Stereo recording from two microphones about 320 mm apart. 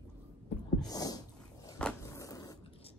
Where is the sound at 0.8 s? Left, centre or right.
Centre.